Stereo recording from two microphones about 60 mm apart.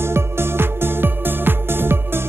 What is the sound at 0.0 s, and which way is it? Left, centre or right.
Music, right.